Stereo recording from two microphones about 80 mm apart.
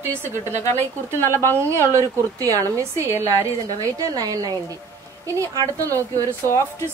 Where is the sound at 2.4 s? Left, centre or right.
Right.